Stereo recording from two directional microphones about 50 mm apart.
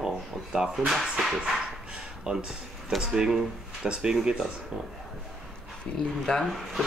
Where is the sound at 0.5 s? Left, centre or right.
Centre.